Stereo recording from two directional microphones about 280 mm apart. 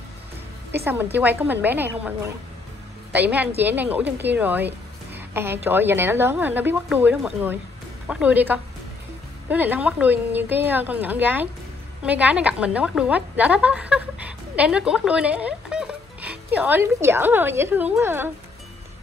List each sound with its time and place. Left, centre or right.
0.7 s a woman's voice: centre